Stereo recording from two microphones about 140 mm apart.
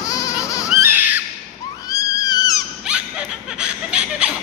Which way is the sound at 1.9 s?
25° left (ahead or behind).